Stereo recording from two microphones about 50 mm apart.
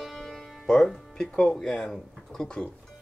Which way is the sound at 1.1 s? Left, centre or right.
Centre.